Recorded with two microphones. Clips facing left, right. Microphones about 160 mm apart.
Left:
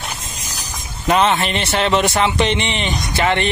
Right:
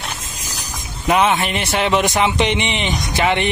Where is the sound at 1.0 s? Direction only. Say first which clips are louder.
Even; 10° right (ahead or behind).